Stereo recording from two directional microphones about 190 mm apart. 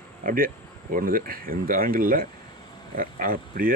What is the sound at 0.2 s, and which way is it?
Speech, 45° right (ahead or behind).